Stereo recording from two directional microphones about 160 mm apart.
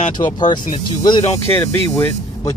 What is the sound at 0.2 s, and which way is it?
Speech, 30° left (ahead or behind).